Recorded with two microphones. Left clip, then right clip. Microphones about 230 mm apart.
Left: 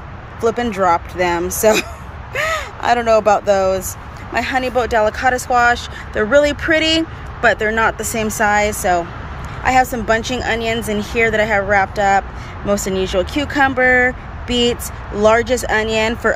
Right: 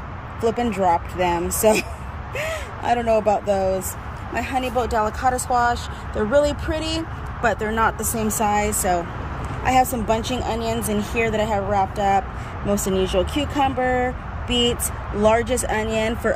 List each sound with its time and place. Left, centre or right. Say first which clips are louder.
0.4 s speech: left 4 dB; centre
4.7 s speech: left 6 dB; left
5.0 s speech: left 6 dB; centre
5.5 s speech: left 6 dB; left
6.7 s speech: left 11 dB; centre